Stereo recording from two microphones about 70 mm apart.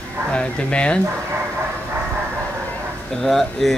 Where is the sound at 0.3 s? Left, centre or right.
Centre.